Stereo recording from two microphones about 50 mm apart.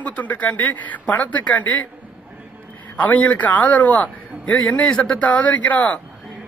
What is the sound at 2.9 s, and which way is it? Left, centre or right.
Speech, left.